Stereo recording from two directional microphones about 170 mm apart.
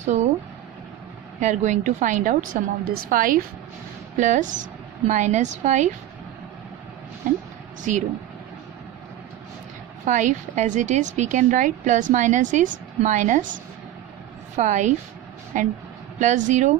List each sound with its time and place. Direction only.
0.0 s speech: 45° right (ahead or behind)
1.4 s speech: 45° right (ahead or behind)
7.2 s speech: 50° right (ahead or behind)
10.0 s speech: 50° right (ahead or behind)